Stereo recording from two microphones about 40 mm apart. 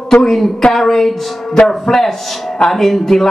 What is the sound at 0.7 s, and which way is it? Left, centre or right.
A man's voice, centre.